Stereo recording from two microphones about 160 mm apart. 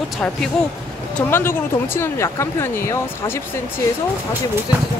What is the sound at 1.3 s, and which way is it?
Speech, 15° left (ahead or behind).